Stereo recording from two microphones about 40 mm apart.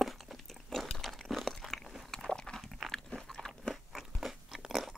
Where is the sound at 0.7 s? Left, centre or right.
Centre.